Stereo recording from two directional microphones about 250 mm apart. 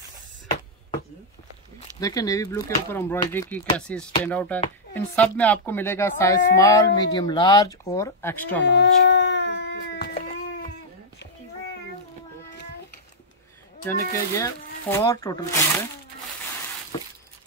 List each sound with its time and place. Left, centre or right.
2.0 s speech: centre
4.2 s a sound: centre
4.9 s speech: centre
8.6 s dog: left
10.1 s cat: left
13.8 s speech: centre